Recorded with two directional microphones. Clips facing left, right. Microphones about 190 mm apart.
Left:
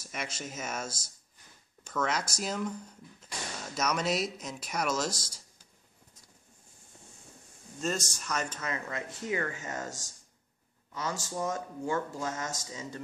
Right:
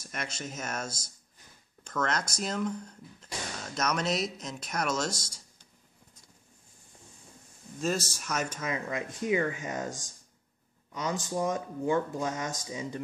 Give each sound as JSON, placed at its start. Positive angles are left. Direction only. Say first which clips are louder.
{"t": 0.0, "sound": "speech", "louder": "right 1 dB", "side_deg": 5}
{"t": 0.8, "sound": "speech", "louder": "right 1 dB", "side_deg": 30}
{"t": 1.9, "sound": "speech", "louder": "right 1 dB", "side_deg": 5}
{"t": 7.8, "sound": "speech", "louder": "right 2 dB", "side_deg": -5}
{"t": 10.9, "sound": "speech", "louder": "right 3 dB", "side_deg": -15}